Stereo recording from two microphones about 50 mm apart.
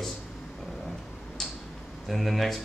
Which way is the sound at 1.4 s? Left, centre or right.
Centre.